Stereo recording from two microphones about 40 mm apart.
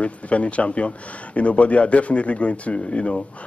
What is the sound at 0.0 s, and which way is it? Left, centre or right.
Speech, left.